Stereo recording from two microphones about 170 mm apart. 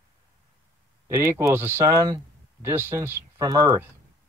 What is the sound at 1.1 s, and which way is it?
Speech, 15° right (ahead or behind).